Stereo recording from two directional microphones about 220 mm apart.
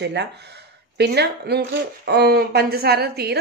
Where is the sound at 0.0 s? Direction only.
50° right (ahead or behind).